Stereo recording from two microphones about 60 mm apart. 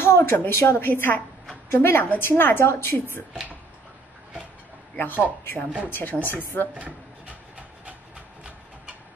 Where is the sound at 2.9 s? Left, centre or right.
Left.